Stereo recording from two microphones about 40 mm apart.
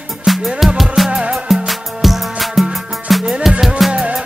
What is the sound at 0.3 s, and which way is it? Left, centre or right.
Music, centre.